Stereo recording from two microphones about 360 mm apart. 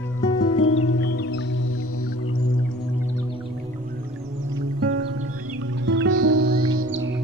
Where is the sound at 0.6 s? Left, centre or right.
Left.